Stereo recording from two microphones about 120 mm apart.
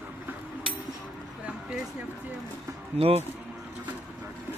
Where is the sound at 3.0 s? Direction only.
55° right (ahead or behind).